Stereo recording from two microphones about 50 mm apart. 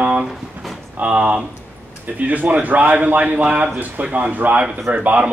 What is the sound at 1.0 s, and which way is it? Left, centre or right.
A man's voice, right.